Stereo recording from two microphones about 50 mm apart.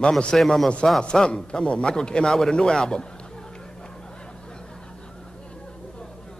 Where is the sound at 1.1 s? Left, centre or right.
Centre.